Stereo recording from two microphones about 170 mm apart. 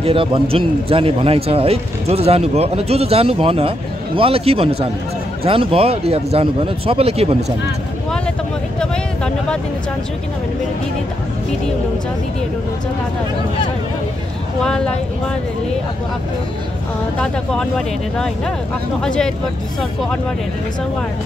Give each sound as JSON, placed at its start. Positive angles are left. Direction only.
{"t": 0.0, "sound": "a man's voice", "side_deg": -30}
{"t": 8.7, "sound": "vehicle", "side_deg": 5}
{"t": 14.6, "sound": "speech", "side_deg": 5}
{"t": 17.2, "sound": "speech", "side_deg": 5}